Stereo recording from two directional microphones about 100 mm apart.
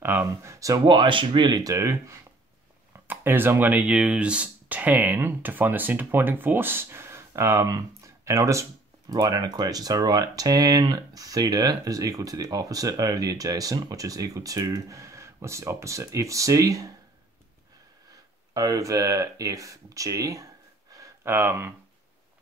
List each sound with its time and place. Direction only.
0.0 s speech: 25° right (ahead or behind)
0.8 s speech: 55° right (ahead or behind); by 16.9 s 35° right (ahead or behind)
18.5 s speech: 35° right (ahead or behind)